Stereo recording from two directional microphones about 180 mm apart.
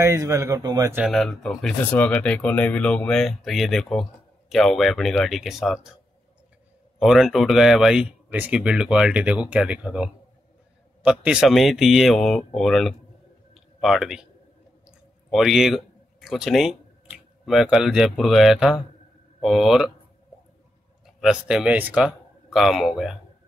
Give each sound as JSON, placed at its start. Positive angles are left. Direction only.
{"t": 0.0, "sound": "a man's voice", "side_deg": -15}
{"t": 1.0, "sound": "speech", "side_deg": 0}
{"t": 7.0, "sound": "speech", "side_deg": 0}
{"t": 15.3, "sound": "speech", "side_deg": -5}
{"t": 21.2, "sound": "speech", "side_deg": -5}